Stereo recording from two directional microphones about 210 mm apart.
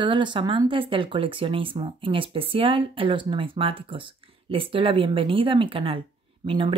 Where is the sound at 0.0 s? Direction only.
20° right (ahead or behind).